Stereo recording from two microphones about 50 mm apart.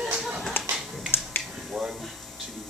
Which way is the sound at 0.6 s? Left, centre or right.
Left.